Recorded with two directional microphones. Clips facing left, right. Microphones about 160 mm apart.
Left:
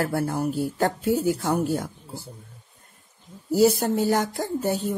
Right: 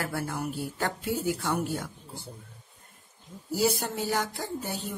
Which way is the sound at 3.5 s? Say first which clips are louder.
Left 8 dB; 45° left (ahead or behind).